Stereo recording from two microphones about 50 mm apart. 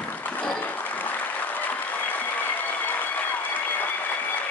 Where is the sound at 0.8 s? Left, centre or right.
Left.